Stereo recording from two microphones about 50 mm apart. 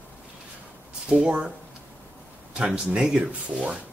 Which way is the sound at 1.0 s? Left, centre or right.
Right.